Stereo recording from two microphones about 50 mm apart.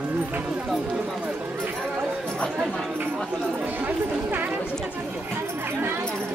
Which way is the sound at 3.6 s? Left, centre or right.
Right.